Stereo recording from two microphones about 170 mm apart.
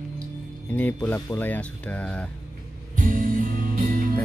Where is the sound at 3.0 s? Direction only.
50° right (ahead or behind).